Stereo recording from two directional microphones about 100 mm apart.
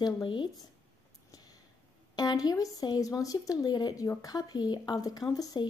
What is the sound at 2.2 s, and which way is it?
Speech, 40° left (ahead or behind).